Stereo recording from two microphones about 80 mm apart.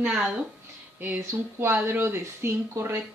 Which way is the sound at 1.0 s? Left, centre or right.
Right.